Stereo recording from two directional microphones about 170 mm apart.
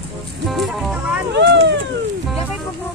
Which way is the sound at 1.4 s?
90° right.